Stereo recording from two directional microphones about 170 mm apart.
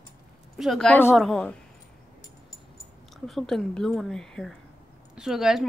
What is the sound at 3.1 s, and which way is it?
Speech, centre (ahead or behind).